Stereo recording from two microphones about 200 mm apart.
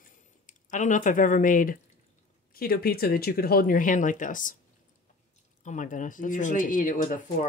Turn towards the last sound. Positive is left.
turn(degrees=45)  # may be behind; listen again after turning